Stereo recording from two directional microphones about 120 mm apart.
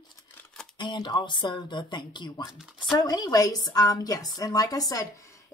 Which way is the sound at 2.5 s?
5° right (ahead or behind).